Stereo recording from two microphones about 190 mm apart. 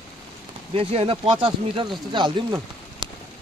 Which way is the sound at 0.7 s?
30° right (ahead or behind).